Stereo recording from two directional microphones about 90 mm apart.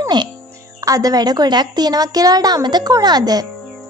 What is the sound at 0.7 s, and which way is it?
A child's voice, 40° right (ahead or behind).